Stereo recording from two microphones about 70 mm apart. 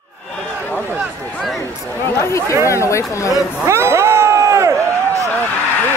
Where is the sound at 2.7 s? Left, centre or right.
Left.